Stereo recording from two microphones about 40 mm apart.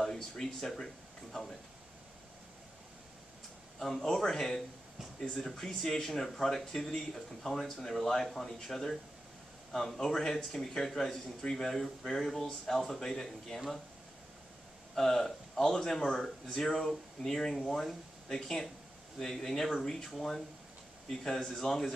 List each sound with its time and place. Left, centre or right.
0.0 s speech: centre
3.8 s speech: centre
15.0 s speech: centre
20.1 s speech: centre